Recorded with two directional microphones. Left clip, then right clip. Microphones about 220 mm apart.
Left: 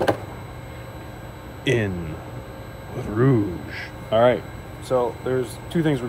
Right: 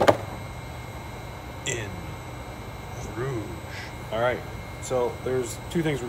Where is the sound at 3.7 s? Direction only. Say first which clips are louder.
Left 9 dB; 35° left (ahead or behind).